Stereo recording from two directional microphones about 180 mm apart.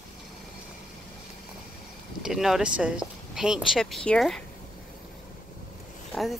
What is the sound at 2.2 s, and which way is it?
Speech, centre (ahead or behind).